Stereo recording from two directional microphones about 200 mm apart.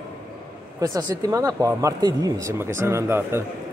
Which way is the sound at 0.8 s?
20° right (ahead or behind).